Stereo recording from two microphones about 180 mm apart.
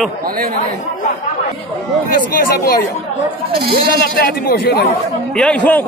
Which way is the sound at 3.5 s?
60° right (ahead or behind).